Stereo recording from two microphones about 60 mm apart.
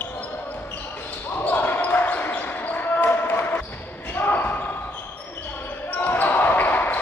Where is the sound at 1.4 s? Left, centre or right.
Left.